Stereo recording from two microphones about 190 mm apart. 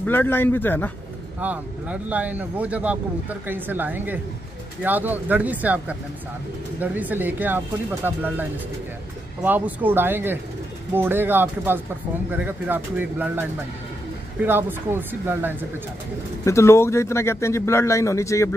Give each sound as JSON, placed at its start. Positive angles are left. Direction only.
{"t": 0.0, "sound": "speech", "side_deg": 10}
{"t": 1.4, "sound": "speech", "side_deg": -10}
{"t": 16.4, "sound": "speech", "side_deg": 15}